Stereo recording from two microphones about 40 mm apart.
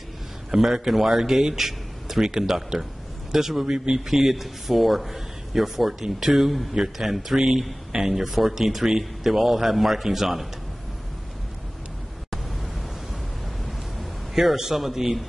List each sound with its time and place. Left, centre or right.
0.5 s a man's voice: centre
3.6 s speech: centre
4.1 s a man's voice: centre
14.3 s speech: centre